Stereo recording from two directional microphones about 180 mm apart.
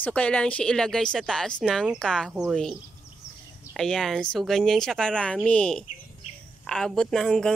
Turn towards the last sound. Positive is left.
turn(degrees=5)  # may be behind; listen again after turning